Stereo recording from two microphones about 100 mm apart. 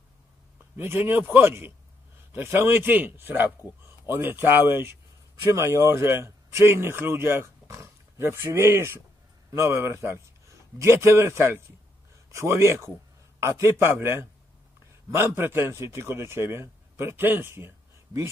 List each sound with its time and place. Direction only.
0.7 s a man's voice: 25° right (ahead or behind)